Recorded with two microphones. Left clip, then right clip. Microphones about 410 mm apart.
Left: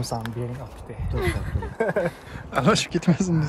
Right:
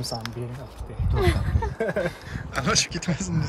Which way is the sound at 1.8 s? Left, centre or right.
Centre.